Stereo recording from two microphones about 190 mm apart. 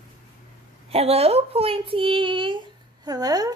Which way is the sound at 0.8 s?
30° right (ahead or behind).